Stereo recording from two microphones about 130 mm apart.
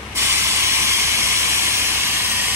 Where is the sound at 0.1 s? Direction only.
20° right (ahead or behind).